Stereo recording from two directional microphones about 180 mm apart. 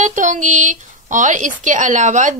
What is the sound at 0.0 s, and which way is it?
Speech, 45° right (ahead or behind).